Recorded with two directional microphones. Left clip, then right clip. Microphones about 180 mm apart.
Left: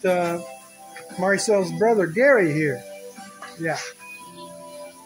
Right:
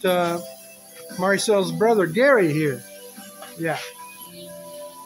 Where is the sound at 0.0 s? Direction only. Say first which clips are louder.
Right 1 dB; 5° right (ahead or behind).